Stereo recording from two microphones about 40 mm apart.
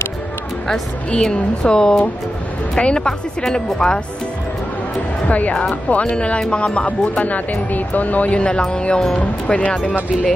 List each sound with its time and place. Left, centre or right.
1.2 s a woman's voice: centre
5.3 s speech: left